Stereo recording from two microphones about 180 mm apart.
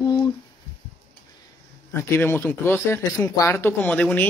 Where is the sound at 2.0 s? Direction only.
10° left (ahead or behind).